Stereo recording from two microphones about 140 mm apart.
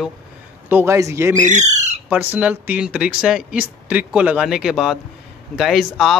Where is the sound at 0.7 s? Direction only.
20° right (ahead or behind).